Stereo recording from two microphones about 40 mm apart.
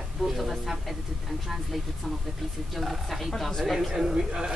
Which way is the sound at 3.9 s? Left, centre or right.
Centre.